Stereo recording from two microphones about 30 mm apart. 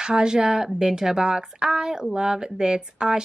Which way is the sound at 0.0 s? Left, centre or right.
Right.